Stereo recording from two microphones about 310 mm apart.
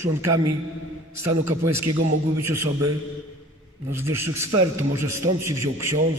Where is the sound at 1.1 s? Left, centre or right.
Right.